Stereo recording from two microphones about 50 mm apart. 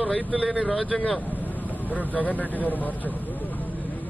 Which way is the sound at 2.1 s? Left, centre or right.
Left.